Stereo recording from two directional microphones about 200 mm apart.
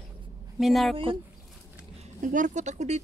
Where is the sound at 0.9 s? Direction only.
25° right (ahead or behind).